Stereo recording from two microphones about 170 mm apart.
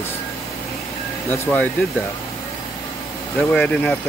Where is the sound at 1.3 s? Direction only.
10° left (ahead or behind).